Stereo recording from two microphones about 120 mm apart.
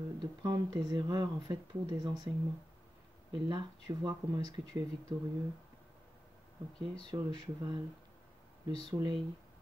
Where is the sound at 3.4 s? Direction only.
40° right (ahead or behind).